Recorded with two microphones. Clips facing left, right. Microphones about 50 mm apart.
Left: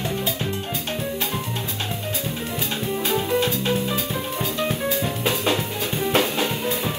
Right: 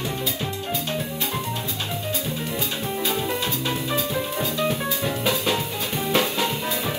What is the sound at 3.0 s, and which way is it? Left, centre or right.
Music, left.